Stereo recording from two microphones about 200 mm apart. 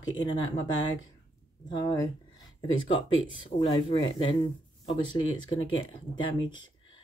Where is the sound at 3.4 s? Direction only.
20° left (ahead or behind).